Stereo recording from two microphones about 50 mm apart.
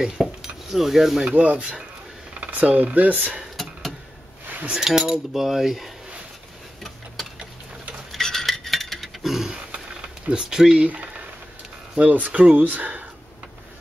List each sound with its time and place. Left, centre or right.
0.0 s cutlery: centre
1.3 s speech: right
3.6 s a sound: centre
4.6 s cutlery: centre
7.2 s a sound: centre
10.2 s cutlery: centre
10.8 s speech: right